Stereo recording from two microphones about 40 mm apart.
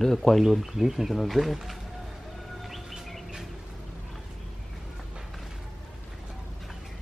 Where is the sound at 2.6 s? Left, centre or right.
Centre.